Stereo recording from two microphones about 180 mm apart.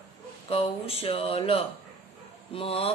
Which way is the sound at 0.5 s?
30° left (ahead or behind).